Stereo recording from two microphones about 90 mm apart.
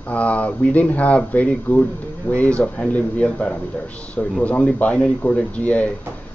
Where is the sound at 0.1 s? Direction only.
15° left (ahead or behind).